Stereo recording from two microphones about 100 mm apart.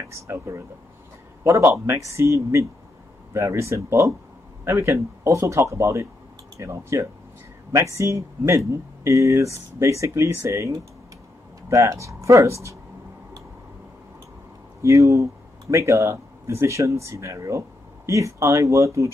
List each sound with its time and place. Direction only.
0.1 s speech: 30° right (ahead or behind)
14.8 s speech: 30° right (ahead or behind)